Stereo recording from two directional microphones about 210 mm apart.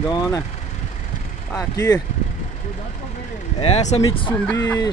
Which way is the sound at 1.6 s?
15° left (ahead or behind).